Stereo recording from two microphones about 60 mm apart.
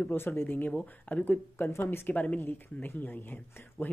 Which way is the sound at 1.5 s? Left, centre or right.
Left.